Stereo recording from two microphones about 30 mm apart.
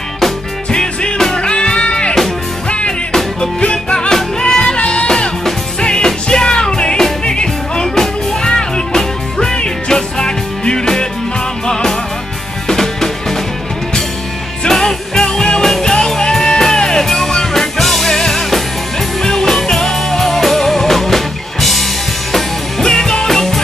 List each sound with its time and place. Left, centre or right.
0.7 s music: left
1.1 s music: centre
1.4 s music: left
3.3 s music: left
4.7 s music: left
5.8 s music: left
7.9 s music: centre
8.5 s music: left; by 13.4 s centre
14.7 s music: centre
17.1 s music: centre
22.8 s music: centre
23.2 s music: centre